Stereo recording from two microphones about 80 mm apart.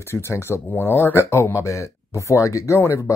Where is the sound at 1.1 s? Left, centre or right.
Left.